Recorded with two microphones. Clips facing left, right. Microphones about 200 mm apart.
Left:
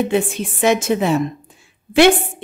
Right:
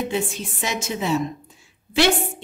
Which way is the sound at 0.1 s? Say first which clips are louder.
Left 7 dB; 60° left (ahead or behind).